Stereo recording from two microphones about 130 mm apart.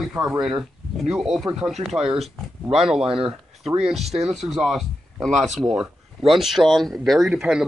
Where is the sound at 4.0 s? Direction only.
55° right (ahead or behind).